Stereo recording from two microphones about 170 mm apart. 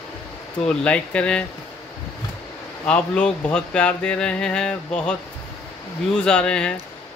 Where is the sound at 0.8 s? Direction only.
5° left (ahead or behind).